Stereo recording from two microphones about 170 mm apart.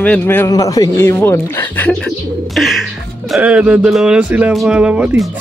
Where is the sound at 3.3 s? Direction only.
5° right (ahead or behind).